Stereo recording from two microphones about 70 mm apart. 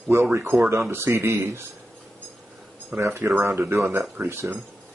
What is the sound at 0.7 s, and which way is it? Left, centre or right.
Speech, right.